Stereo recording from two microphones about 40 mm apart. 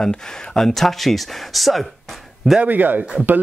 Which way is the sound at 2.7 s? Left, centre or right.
Right.